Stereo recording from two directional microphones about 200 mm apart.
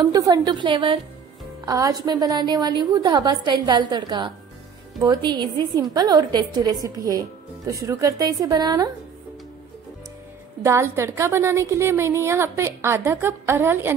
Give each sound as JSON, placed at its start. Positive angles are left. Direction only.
{"t": 0.0, "sound": "a woman's voice", "side_deg": -20}
{"t": 10.6, "sound": "a woman's voice", "side_deg": -15}